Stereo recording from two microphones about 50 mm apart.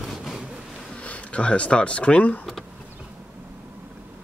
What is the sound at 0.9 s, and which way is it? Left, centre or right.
Speech, left.